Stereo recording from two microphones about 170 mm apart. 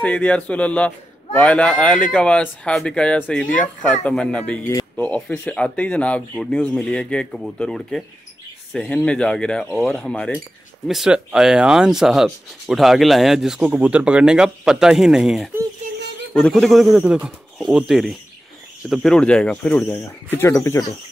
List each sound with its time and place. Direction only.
0.0 s a man's voice: 10° left (ahead or behind)
19.8 s a man's voice: 15° left (ahead or behind)